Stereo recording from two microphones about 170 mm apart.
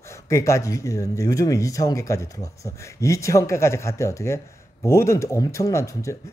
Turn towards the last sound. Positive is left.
turn(degrees=20)  # may be behind; listen again after turning